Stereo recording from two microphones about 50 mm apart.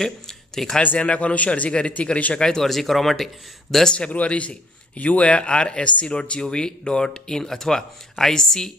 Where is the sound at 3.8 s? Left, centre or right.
Centre.